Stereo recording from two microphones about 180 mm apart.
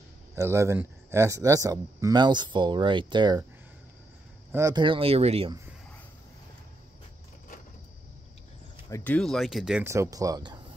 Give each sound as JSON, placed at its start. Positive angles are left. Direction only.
{"t": 0.4, "sound": "speech", "side_deg": -15}
{"t": 4.5, "sound": "speech", "side_deg": -15}
{"t": 8.9, "sound": "speech", "side_deg": 10}
{"t": 9.8, "sound": "speech", "side_deg": -15}